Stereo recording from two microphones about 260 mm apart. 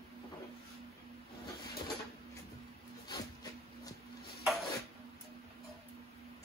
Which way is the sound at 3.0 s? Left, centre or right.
Centre.